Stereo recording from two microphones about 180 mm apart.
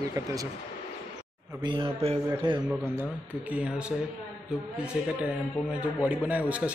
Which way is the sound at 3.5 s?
5° right (ahead or behind).